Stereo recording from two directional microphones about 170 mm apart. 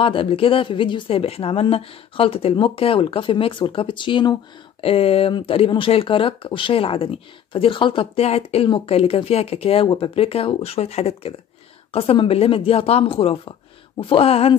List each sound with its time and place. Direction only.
0.0 s speech: 30° left (ahead or behind)